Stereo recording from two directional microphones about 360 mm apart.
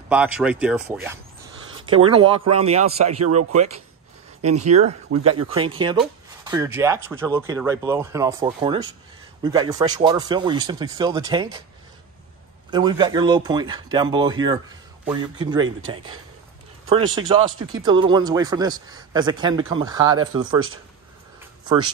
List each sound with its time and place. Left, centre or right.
0.1 s speech: centre
1.9 s speech: centre
2.8 s speech: right
4.6 s speech: centre
12.7 s speech: centre
17.1 s speech: centre
21.6 s speech: centre